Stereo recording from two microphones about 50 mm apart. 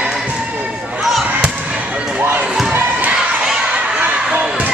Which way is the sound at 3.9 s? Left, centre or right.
Right.